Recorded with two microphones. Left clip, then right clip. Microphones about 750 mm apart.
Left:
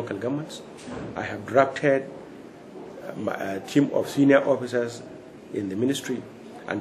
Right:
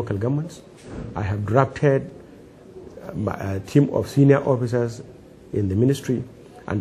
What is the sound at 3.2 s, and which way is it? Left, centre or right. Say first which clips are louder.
Speech: even; right.